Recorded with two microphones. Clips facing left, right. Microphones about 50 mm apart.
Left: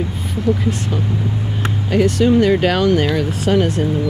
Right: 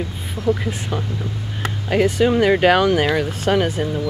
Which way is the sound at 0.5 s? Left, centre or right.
Centre.